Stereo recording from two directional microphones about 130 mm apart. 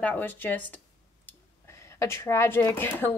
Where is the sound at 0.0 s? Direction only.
15° left (ahead or behind).